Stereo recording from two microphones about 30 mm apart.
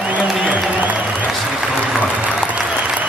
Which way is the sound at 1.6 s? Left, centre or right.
Right.